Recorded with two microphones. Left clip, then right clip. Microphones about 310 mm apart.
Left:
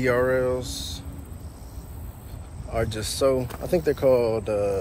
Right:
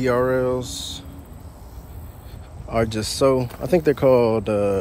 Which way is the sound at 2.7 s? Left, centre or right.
Centre.